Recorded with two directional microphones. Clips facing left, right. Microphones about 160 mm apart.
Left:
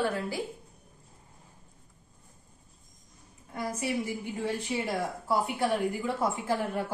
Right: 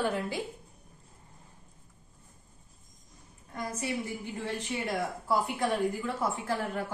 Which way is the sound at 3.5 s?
10° left (ahead or behind).